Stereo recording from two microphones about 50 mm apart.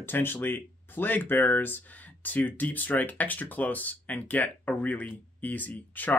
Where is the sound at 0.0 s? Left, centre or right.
Left.